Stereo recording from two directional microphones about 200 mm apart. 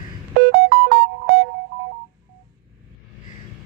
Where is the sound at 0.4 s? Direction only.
60° right (ahead or behind).